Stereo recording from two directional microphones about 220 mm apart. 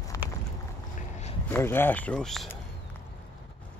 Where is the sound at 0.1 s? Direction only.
15° left (ahead or behind).